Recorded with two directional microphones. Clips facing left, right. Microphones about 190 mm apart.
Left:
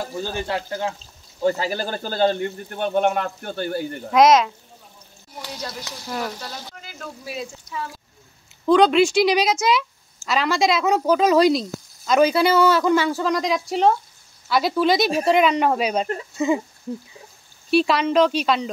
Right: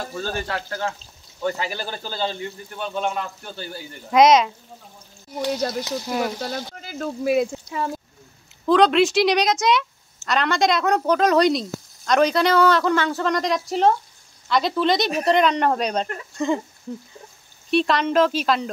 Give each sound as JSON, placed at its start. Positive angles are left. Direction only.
{"t": 0.0, "sound": "speech", "side_deg": 15}
{"t": 1.4, "sound": "speech", "side_deg": 35}
{"t": 4.1, "sound": "speech", "side_deg": 0}
{"t": 5.5, "sound": "speech", "side_deg": -50}
{"t": 5.9, "sound": "sizzle", "side_deg": -15}
{"t": 6.8, "sound": "speech", "side_deg": -40}
{"t": 8.6, "sound": "speech", "side_deg": 0}
{"t": 17.6, "sound": "speech", "side_deg": 5}